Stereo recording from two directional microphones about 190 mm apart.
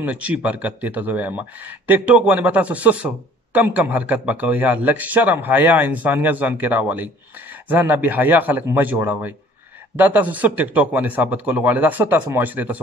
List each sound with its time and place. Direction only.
0.0 s a man's voice: 5° right (ahead or behind)